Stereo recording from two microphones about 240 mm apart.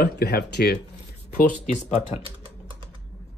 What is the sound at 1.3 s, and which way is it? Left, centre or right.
Speech, left.